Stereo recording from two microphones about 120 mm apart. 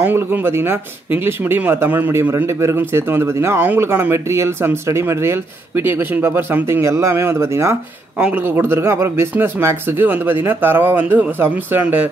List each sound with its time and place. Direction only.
0.0 s speech: 15° right (ahead or behind)